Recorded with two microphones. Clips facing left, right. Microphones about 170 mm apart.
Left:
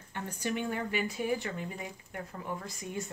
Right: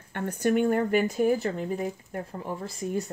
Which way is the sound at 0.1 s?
55° right (ahead or behind).